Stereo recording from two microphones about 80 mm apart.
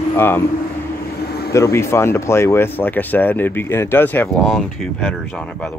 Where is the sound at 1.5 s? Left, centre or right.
Left.